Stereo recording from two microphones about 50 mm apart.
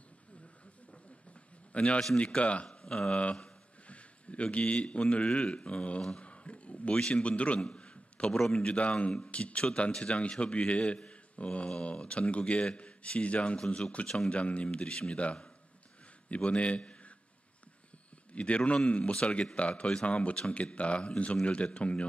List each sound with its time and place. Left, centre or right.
1.7 s a man's voice: left
3.8 s a sound: left
5.1 s speech: left
6.2 s a sound: left
7.0 s a man's voice: left
8.3 s speech: centre
13.6 s speech: centre
14.3 s a man's voice: left
18.3 s speech: left